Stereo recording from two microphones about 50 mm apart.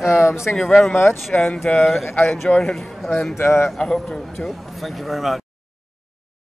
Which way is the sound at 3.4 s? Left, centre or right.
Left.